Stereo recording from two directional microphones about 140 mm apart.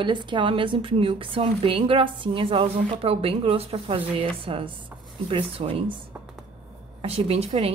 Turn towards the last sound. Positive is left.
turn(degrees=-45)  # may be behind; listen again after turning